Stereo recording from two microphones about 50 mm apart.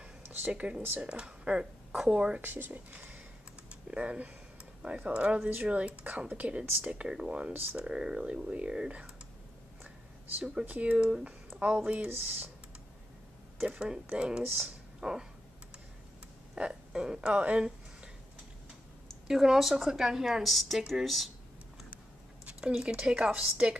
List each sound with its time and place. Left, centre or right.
0.2 s a sound: right
0.5 s speech: right
2.4 s speech: right
2.9 s a sound: right
3.9 s speech: right
5.4 s speech: right
5.7 s speech: right
6.8 s a woman's voice: centre
10.6 s speech: right
13.7 s a woman's voice: centre
14.6 s a sound: centre
16.5 s speech: centre
19.2 s a woman's voice: centre
22.5 s a woman's voice: centre